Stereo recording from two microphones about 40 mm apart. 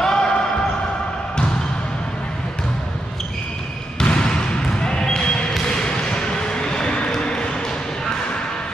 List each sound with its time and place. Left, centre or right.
0.0 s basketball bounce: centre
4.0 s basketball bounce: left